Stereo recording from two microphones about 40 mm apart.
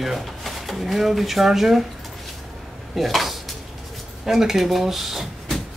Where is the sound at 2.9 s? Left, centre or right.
Centre.